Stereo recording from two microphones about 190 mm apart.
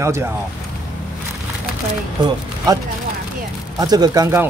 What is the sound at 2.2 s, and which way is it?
Speech, 20° right (ahead or behind).